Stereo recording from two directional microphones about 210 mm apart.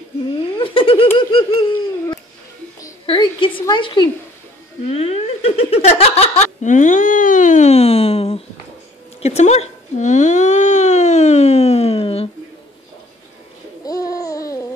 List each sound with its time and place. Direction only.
0.3 s laughter: 25° left (ahead or behind)
1.1 s a sound: 25° left (ahead or behind)
2.8 s a woman's voice: 25° left (ahead or behind)
13.8 s babbling: 15° left (ahead or behind)